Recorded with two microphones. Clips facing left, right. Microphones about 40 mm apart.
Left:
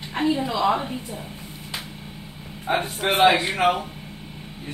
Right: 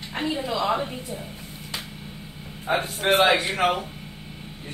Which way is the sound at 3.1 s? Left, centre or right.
Left.